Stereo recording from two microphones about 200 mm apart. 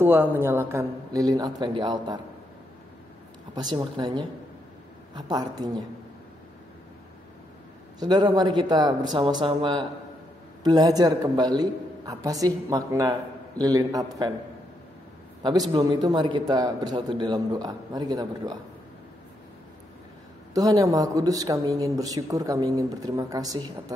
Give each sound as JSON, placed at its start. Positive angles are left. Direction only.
{"t": 0.0, "sound": "speech", "side_deg": -10}
{"t": 3.6, "sound": "a man's voice", "side_deg": -25}
{"t": 8.0, "sound": "a man's voice", "side_deg": -20}
{"t": 15.7, "sound": "a man's voice", "side_deg": -20}
{"t": 20.5, "sound": "speech", "side_deg": -15}